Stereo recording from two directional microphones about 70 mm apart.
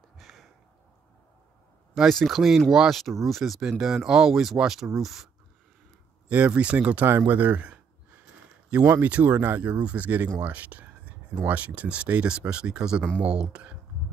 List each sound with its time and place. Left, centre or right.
0.2 s a sound: centre
2.0 s speech: centre
6.2 s speech: centre
9.0 s speech: right
9.6 s speech: centre